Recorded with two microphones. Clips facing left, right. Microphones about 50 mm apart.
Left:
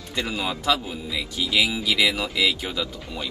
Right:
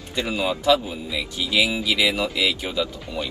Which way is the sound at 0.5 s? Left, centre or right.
Right.